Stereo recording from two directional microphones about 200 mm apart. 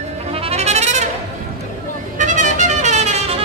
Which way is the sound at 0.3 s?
30° right (ahead or behind).